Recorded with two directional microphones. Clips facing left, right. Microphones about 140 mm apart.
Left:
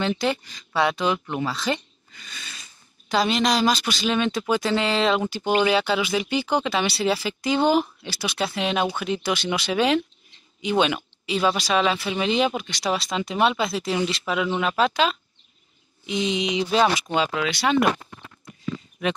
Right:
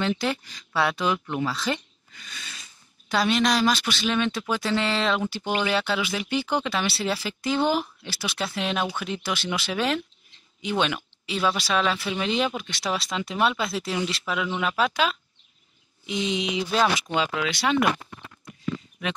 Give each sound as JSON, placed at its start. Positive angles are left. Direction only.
{"t": 0.0, "sound": "speech", "side_deg": 0}
{"t": 1.7, "sound": "a sound", "side_deg": 0}
{"t": 3.1, "sound": "speech", "side_deg": 0}
{"t": 17.1, "sound": "speech", "side_deg": 25}